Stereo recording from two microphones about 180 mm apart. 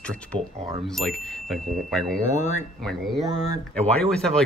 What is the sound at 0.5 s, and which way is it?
Speech, 40° right (ahead or behind).